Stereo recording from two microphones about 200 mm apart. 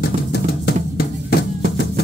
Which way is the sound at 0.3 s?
55° left (ahead or behind).